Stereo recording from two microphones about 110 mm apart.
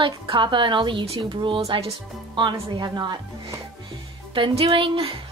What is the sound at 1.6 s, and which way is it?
Speech, 65° right (ahead or behind).